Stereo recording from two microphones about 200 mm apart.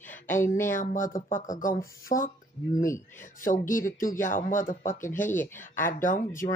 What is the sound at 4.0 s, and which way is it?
Speech, 40° left (ahead or behind).